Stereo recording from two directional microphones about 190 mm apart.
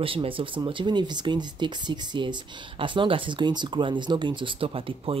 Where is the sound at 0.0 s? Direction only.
30° right (ahead or behind).